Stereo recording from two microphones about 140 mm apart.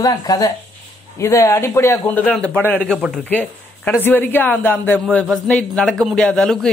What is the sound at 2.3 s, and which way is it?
A man's voice, 10° left (ahead or behind).